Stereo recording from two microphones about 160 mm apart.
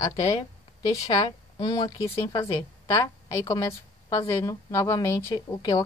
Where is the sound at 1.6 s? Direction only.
30° left (ahead or behind).